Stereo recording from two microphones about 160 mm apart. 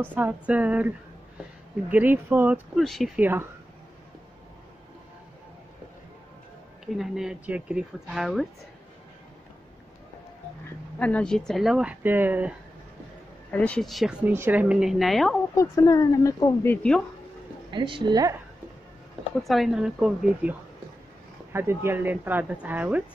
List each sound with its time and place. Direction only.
0.0 s speech: 10° right (ahead or behind)
2.8 s speech: centre (ahead or behind)
3.2 s speech: 15° right (ahead or behind)
7.0 s speech: 5° right (ahead or behind)
11.0 s speech: 10° left (ahead or behind); by 12.5 s 10° right (ahead or behind)
13.5 s speech: 5° left (ahead or behind)
14.2 s speech: 15° right (ahead or behind)
15.5 s speech: 20° left (ahead or behind)
16.7 s speech: 5° left (ahead or behind)
17.6 s a woman's voice: 30° right (ahead or behind)
19.4 s speech: centre (ahead or behind)
21.5 s speech: 15° right (ahead or behind)